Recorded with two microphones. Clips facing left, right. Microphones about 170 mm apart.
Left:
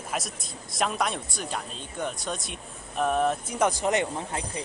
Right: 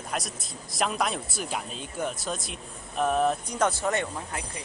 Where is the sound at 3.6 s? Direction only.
15° left (ahead or behind).